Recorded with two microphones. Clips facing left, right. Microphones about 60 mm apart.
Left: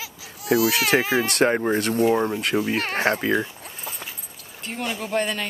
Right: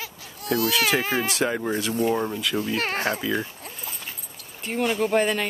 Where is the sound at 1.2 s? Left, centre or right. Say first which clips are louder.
Left 5 dB; left.